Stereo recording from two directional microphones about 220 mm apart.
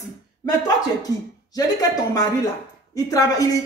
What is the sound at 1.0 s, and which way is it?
A woman's voice, 15° left (ahead or behind).